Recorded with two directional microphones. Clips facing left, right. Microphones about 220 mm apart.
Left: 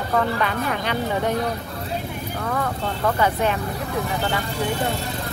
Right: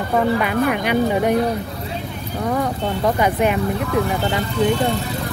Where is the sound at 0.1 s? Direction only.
15° right (ahead or behind).